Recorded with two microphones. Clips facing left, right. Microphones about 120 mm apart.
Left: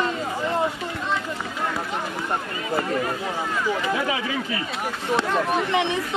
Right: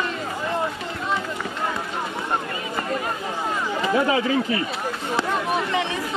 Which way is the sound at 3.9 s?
35° right (ahead or behind).